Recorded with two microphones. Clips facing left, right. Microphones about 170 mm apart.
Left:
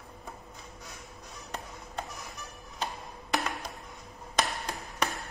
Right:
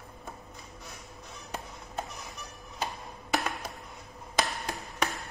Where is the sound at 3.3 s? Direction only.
Centre (ahead or behind).